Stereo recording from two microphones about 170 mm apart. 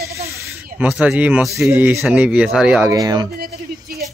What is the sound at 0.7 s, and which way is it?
A man's voice, 10° right (ahead or behind).